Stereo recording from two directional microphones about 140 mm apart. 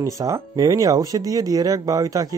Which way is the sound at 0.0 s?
20° right (ahead or behind).